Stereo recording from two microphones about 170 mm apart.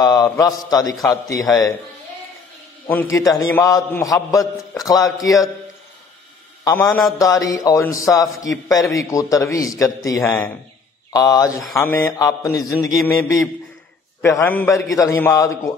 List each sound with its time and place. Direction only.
0.0 s a man's voice: 20° left (ahead or behind)
2.9 s a man's voice: 15° left (ahead or behind)
6.6 s a man's voice: 15° left (ahead or behind)